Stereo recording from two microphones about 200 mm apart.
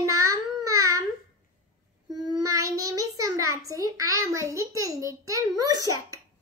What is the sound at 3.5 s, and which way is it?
A child's voice, 15° right (ahead or behind).